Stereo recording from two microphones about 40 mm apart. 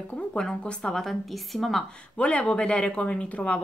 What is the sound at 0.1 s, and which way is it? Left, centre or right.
Speech, left.